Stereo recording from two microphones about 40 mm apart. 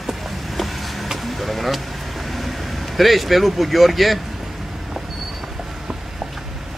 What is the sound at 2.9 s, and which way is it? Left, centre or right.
Speech, centre.